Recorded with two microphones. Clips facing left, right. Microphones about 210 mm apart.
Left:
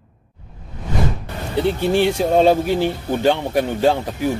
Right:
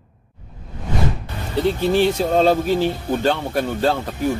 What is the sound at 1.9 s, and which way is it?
Speech, 15° left (ahead or behind).